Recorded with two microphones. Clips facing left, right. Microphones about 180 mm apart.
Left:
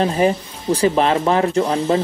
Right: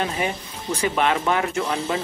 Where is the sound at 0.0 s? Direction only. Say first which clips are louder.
Left 9 dB; 35° left (ahead or behind).